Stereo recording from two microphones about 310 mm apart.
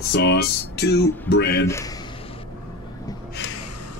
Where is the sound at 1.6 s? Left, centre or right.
Centre.